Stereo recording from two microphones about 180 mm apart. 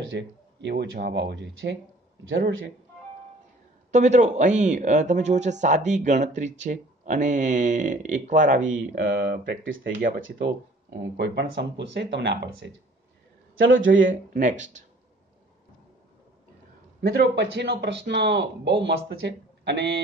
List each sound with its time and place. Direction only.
0.1 s a man's voice: 75° right (ahead or behind)
2.2 s a man's voice: 90° right
3.9 s speech: 40° right (ahead or behind); by 9.9 s 75° right (ahead or behind)
9.9 s speech: 50° right (ahead or behind)
10.4 s a man's voice: 70° right (ahead or behind)
13.6 s speech: 90° right
14.3 s speech: 45° right (ahead or behind)
17.0 s a man's voice: 70° right (ahead or behind)